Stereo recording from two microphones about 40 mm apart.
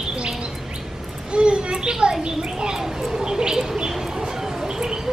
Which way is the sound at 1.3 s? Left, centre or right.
Right.